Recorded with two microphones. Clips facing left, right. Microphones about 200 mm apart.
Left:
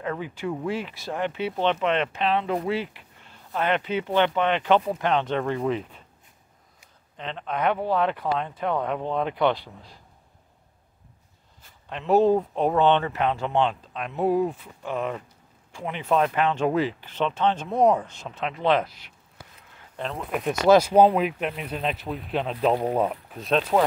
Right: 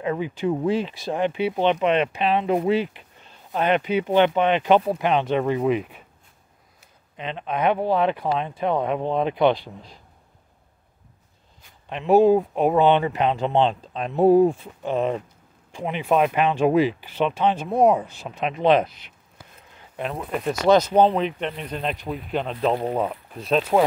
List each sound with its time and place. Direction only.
0.0 s speech: 15° right (ahead or behind)
7.2 s speech: 15° right (ahead or behind)
11.9 s speech: 15° right (ahead or behind)
20.2 s speech: 5° left (ahead or behind)